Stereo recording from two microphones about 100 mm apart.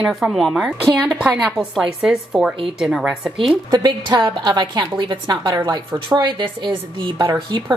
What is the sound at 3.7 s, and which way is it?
A woman's voice, 40° right (ahead or behind).